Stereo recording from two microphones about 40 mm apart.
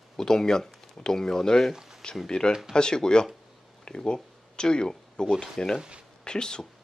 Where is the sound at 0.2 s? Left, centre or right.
Centre.